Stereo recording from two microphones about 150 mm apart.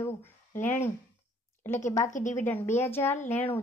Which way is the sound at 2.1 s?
55° left (ahead or behind).